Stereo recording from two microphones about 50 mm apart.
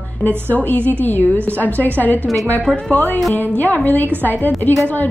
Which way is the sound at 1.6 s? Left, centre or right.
Left.